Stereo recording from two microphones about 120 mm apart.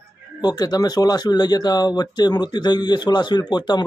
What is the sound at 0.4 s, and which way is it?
Speech, 35° left (ahead or behind).